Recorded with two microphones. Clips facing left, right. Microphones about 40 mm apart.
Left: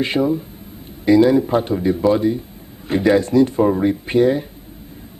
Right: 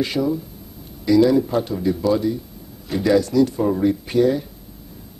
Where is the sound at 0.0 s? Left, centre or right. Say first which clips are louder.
Left 3 dB; left.